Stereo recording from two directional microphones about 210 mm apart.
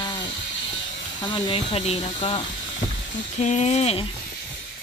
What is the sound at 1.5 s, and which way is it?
Speech, 25° left (ahead or behind).